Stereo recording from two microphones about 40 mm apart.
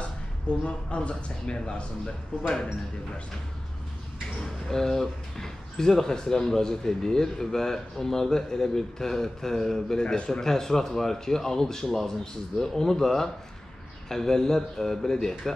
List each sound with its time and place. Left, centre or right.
0.7 s a man's voice: left
4.6 s speech: centre